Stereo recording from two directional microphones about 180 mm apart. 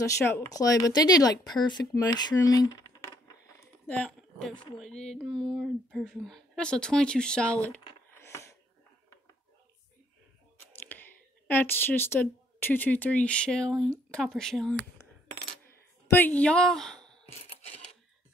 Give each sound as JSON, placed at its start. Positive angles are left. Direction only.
{"t": 0.0, "sound": "speech", "side_deg": 15}
{"t": 3.8, "sound": "speech", "side_deg": 5}
{"t": 10.8, "sound": "speech", "side_deg": 10}
{"t": 16.2, "sound": "a woman's voice", "side_deg": 10}